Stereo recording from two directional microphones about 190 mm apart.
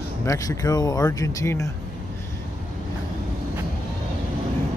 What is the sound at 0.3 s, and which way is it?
Speech, 20° left (ahead or behind).